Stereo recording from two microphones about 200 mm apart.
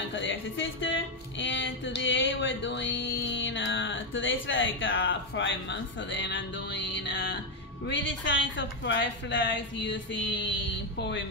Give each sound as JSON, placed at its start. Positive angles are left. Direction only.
{"t": 0.1, "sound": "speech", "side_deg": 70}
{"t": 1.4, "sound": "a sound", "side_deg": 65}
{"t": 7.9, "sound": "a woman's voice", "side_deg": 65}